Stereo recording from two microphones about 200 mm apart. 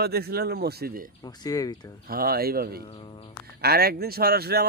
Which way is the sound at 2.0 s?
50° right (ahead or behind).